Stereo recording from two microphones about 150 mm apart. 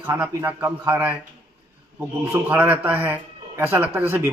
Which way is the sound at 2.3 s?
15° right (ahead or behind).